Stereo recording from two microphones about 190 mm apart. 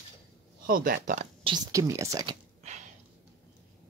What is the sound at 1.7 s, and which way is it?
Speech, 15° right (ahead or behind).